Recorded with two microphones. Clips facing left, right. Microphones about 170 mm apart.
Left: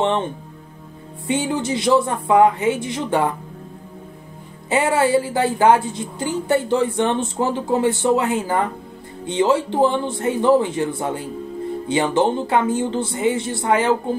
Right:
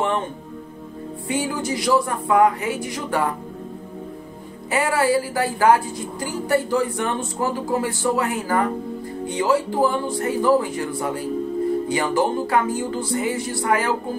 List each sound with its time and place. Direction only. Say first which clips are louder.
1.2 s a woman's voice: left 3 dB; 25° left (ahead or behind)
4.6 s a woman's voice: left 2 dB; 25° left (ahead or behind)